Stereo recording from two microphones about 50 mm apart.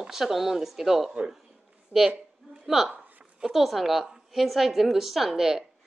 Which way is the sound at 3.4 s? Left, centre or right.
Centre.